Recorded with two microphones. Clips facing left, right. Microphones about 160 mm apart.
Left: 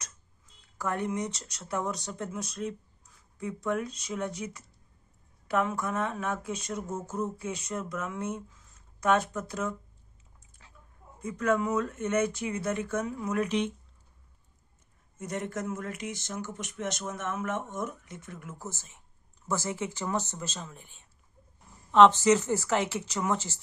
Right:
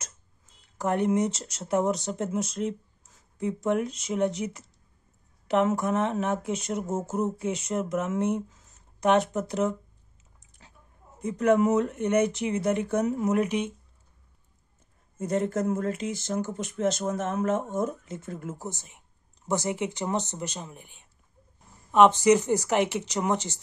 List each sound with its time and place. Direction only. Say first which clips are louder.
0.7 s speech: right 7 dB; 20° right (ahead or behind)
8.4 s a sound: right 9 dB; 40° right (ahead or behind)
9.0 s speech: right 4 dB; 20° right (ahead or behind)
11.1 s speech: right 6 dB; 20° right (ahead or behind)
15.1 s speech: right 8 dB; 30° right (ahead or behind)
18.6 s speech: right 4 dB; 15° right (ahead or behind)